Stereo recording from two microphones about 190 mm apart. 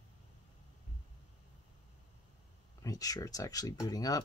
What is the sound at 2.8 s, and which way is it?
Speech, 20° left (ahead or behind).